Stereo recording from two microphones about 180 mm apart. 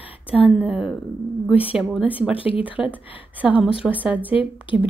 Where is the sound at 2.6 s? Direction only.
10° right (ahead or behind).